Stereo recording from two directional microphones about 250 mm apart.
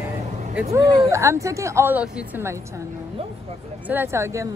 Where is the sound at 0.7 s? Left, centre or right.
Centre.